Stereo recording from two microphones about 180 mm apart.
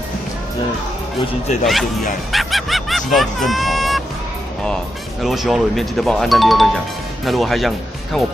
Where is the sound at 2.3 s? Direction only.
Centre (ahead or behind).